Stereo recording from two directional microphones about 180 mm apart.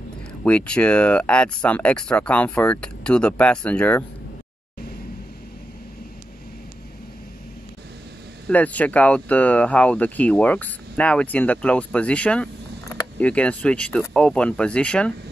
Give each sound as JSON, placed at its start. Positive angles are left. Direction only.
{"t": 0.4, "sound": "speech", "side_deg": 5}
{"t": 8.5, "sound": "speech", "side_deg": 10}